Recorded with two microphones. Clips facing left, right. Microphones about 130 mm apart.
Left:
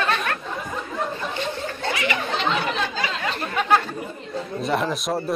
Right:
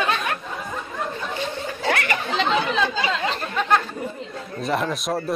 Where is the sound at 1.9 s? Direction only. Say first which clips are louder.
Right 3 dB; 55° right (ahead or behind).